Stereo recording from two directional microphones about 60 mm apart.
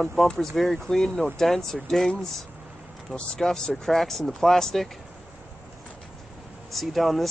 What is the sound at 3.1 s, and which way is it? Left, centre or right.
Speech, centre.